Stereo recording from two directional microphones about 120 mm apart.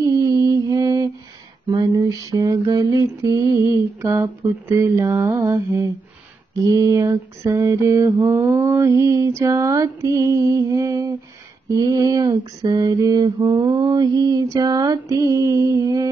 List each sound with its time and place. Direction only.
0.0 s mantra: 25° right (ahead or behind)